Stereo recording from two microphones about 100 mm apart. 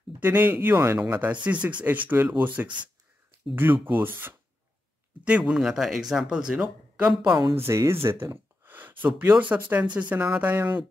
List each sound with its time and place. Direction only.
0.2 s speech: 20° right (ahead or behind)
5.4 s speech: 5° right (ahead or behind)
7.5 s speech: 30° right (ahead or behind)